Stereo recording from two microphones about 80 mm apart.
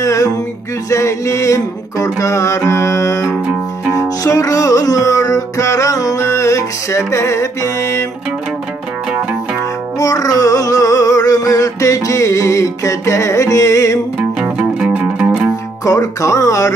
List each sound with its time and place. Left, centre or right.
0.0 s music: left
9.9 s music: left
14.4 s music: centre
15.8 s speech: left